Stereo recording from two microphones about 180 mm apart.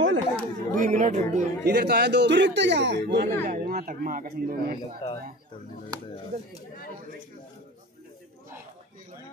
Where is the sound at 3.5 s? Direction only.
50° right (ahead or behind).